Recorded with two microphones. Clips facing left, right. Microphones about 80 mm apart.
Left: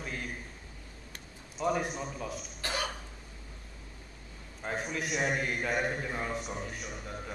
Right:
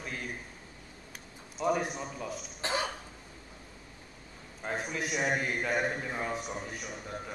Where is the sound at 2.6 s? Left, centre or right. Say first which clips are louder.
Right 2 dB; right.